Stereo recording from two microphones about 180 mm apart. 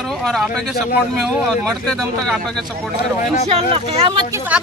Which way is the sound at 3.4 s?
35° right (ahead or behind).